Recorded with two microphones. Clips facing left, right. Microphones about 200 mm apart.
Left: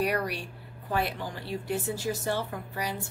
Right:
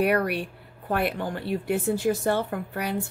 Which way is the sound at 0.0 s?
60° right (ahead or behind).